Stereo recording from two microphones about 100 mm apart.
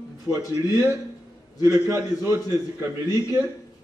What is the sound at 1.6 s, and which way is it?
A man's voice, 30° right (ahead or behind).